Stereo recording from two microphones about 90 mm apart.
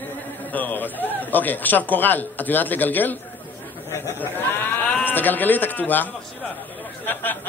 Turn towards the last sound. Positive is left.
turn(degrees=20)  # may be behind; listen again after turning